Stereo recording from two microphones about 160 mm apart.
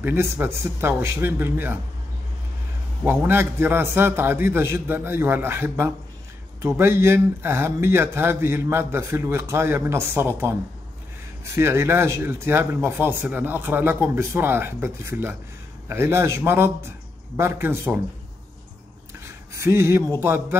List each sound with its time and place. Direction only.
0.0 s speech: 15° right (ahead or behind)
3.0 s speech: 15° right (ahead or behind)
11.5 s speech: 15° right (ahead or behind)
19.1 s a sound: 15° right (ahead or behind)